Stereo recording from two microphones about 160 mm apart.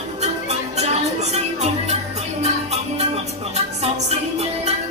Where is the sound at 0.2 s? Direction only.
45° right (ahead or behind).